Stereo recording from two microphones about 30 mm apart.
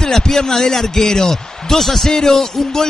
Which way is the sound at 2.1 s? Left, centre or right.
Centre.